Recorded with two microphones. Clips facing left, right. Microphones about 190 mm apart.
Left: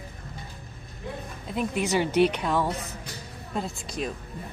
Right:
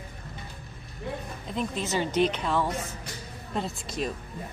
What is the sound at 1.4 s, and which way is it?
A woman's voice, 10° left (ahead or behind).